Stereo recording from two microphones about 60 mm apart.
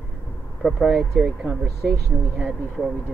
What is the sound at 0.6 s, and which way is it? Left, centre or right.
Speech, centre.